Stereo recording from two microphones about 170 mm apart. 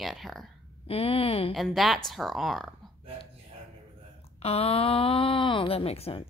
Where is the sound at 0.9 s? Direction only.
35° left (ahead or behind).